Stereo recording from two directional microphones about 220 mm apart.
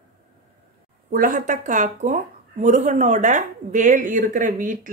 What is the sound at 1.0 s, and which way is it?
Speech, 40° right (ahead or behind).